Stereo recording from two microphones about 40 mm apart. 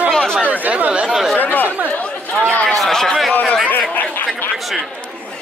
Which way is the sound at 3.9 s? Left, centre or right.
Left.